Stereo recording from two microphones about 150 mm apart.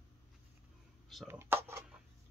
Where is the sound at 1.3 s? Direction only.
15° right (ahead or behind).